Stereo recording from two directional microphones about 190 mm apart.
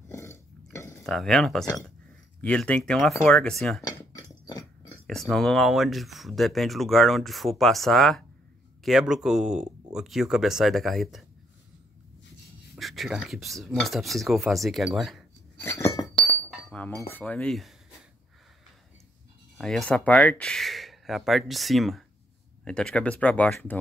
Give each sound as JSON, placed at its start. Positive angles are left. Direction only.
{"t": 0.1, "sound": "a sound", "side_deg": 15}
{"t": 1.0, "sound": "speech", "side_deg": 0}
{"t": 3.8, "sound": "a sound", "side_deg": 15}
{"t": 5.0, "sound": "speech", "side_deg": 0}
{"t": 12.7, "sound": "speech", "side_deg": 0}
{"t": 15.6, "sound": "chink", "side_deg": 15}
{"t": 16.7, "sound": "speech", "side_deg": 10}
{"t": 19.6, "sound": "speech", "side_deg": 5}